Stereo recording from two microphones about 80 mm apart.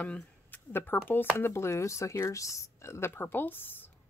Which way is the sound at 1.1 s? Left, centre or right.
Left.